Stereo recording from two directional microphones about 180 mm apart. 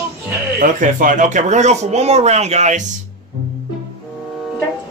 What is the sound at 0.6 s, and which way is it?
Speech, 45° right (ahead or behind).